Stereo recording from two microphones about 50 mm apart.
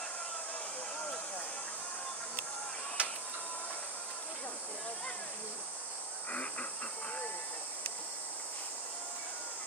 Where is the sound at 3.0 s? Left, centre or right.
Right.